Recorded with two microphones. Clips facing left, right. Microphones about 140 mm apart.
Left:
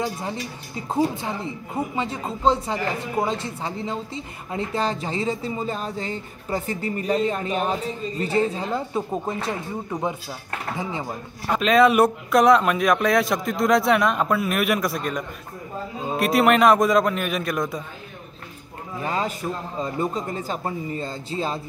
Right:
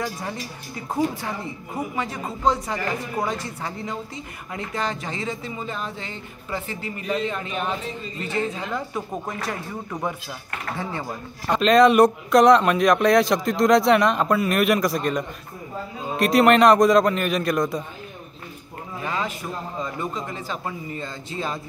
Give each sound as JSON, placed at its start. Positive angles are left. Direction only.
{"t": 0.0, "sound": "speech", "side_deg": 20}
{"t": 11.4, "sound": "speech", "side_deg": 5}
{"t": 19.0, "sound": "speech", "side_deg": 35}